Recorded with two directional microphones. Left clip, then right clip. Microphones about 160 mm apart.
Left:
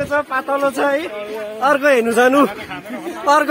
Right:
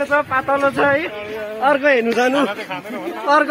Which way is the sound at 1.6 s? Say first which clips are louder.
Left 1 dB; 25° left (ahead or behind).